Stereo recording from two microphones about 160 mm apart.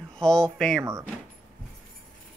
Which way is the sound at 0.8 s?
20° right (ahead or behind).